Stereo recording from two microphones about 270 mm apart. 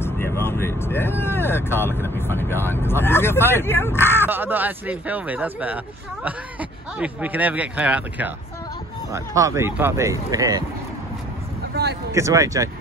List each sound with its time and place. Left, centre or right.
0.0 s vehicle: centre
3.4 s speech: centre
4.3 s speech: centre
11.7 s a sound: right
12.1 s speech: centre